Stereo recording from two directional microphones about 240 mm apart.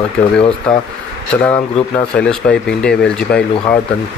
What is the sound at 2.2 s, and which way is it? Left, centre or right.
Speech, centre.